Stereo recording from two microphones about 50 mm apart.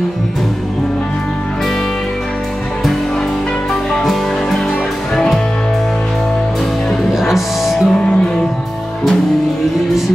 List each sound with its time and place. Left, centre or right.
3.9 s music: centre
7.2 s music: centre
7.9 s music: centre